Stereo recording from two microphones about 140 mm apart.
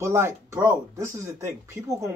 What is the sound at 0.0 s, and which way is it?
Speech, 20° right (ahead or behind).